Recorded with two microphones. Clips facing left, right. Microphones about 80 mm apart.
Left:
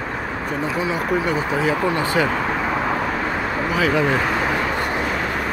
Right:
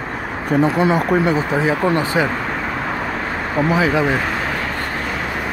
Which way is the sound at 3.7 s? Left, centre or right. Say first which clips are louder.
Right 2 dB; right.